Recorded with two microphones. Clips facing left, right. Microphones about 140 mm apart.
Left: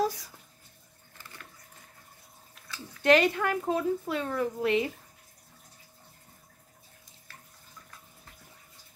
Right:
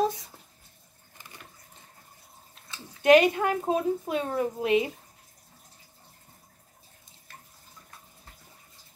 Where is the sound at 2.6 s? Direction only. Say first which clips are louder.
Right 3 dB; 20° right (ahead or behind).